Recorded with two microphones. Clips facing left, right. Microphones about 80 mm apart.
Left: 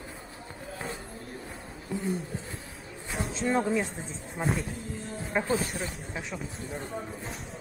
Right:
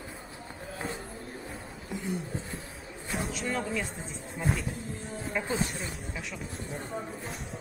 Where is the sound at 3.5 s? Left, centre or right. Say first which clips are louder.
Left 7 dB; left.